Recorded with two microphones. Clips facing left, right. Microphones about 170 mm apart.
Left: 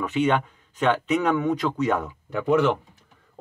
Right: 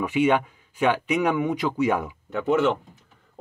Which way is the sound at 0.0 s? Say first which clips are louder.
Right 1 dB; 10° right (ahead or behind).